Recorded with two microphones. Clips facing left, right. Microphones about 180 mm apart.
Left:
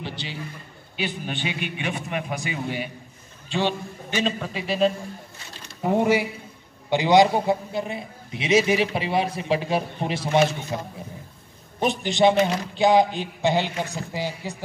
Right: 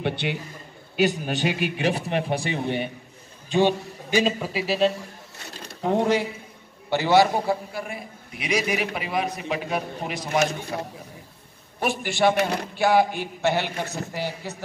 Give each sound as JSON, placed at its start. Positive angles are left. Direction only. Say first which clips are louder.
{"t": 0.0, "sound": "a man's voice", "louder": "right 8 dB", "side_deg": -60}
{"t": 1.2, "sound": "a man's voice", "louder": "right 5 dB", "side_deg": -40}
{"t": 3.4, "sound": "a man's voice", "louder": "right 4 dB", "side_deg": -15}
{"t": 5.8, "sound": "a man's voice", "louder": "left 1 dB", "side_deg": 10}
{"t": 11.8, "sound": "a man's voice", "louder": "left 2 dB", "side_deg": 20}